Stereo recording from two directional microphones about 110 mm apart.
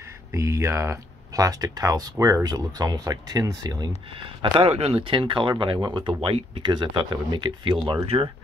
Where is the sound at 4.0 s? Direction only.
55° right (ahead or behind).